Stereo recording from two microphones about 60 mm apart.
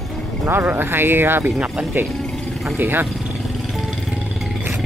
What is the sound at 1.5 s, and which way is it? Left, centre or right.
Speech, centre.